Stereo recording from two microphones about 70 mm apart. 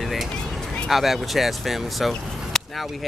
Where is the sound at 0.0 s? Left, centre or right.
Centre.